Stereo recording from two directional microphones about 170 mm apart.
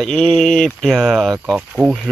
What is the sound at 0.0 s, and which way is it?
Speech, 5° left (ahead or behind).